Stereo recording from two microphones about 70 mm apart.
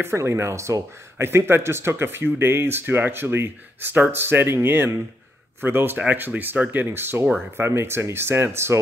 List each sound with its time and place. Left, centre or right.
0.0 s speech: right